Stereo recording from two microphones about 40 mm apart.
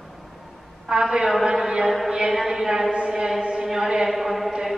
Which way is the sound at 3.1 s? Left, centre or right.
Centre.